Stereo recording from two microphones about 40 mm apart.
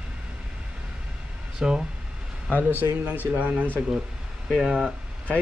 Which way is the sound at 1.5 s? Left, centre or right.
Centre.